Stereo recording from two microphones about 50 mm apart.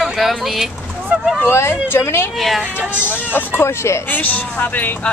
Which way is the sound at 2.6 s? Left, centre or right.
Right.